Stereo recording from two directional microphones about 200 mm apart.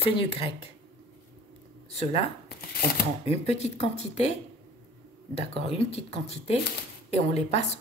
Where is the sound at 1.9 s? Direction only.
30° left (ahead or behind).